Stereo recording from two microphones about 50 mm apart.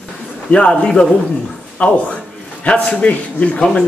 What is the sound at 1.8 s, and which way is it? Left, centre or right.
Speech, left.